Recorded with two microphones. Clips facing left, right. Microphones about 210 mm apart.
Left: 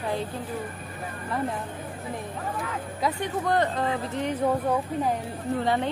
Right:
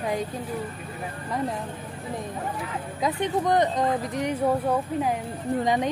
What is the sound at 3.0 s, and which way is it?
Speech, 20° right (ahead or behind).